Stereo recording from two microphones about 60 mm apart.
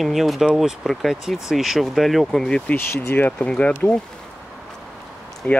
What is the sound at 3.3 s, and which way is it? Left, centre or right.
Speech, centre.